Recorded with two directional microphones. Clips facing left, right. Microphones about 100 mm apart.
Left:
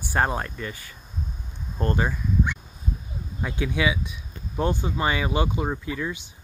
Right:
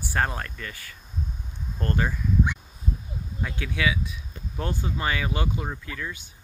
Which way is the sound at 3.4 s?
20° left (ahead or behind).